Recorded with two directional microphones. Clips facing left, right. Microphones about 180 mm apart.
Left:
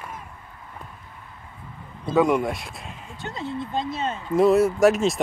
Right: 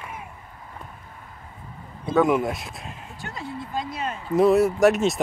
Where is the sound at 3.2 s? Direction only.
25° left (ahead or behind).